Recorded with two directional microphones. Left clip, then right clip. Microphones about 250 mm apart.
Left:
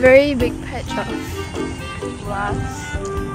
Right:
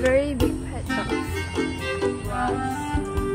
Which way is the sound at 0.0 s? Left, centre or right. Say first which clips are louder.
Left 10 dB; left.